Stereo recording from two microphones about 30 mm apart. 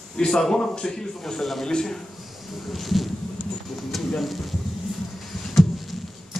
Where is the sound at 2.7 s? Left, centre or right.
Centre.